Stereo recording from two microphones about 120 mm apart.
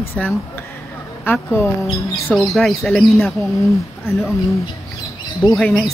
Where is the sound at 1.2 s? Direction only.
20° left (ahead or behind).